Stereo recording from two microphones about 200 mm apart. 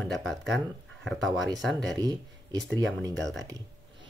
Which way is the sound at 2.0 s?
20° right (ahead or behind).